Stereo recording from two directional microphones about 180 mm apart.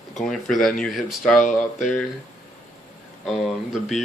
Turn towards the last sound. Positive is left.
turn(degrees=0)  # may be behind; listen again after turning